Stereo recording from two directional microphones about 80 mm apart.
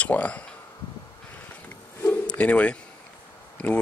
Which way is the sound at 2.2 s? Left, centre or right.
Centre.